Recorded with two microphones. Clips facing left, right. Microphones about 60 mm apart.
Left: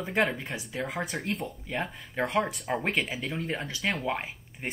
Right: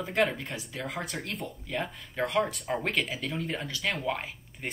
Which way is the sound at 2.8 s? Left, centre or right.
Centre.